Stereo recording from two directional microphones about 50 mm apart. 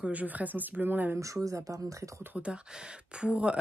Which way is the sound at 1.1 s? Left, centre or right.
Right.